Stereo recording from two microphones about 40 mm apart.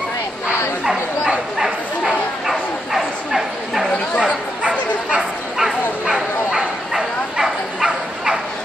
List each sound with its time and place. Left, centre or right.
1.6 s bow-wow: centre
4.2 s bow-wow: right
5.6 s bow-wow: centre